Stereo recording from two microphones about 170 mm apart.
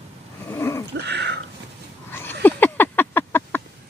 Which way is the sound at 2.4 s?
10° left (ahead or behind).